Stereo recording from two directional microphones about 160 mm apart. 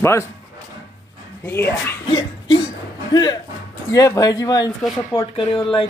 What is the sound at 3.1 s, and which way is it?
Speech, 25° left (ahead or behind).